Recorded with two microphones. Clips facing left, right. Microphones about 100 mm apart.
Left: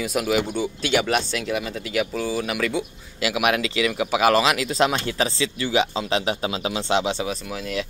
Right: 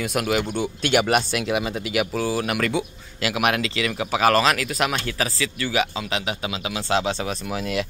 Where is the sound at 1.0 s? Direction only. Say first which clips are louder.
Right 2 dB; 10° right (ahead or behind); by 4.7 s 15° left (ahead or behind).